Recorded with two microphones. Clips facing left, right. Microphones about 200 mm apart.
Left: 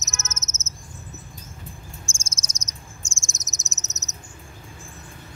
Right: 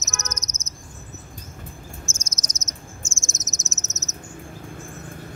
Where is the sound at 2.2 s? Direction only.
10° left (ahead or behind).